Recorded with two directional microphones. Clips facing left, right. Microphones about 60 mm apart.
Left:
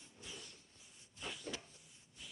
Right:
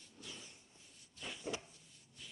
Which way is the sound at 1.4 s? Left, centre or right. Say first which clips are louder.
Right 8 dB; centre.